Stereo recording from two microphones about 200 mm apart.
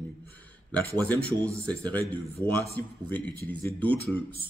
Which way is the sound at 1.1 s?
5° left (ahead or behind).